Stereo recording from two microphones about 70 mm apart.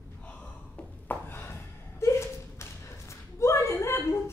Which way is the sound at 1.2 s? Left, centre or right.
Left.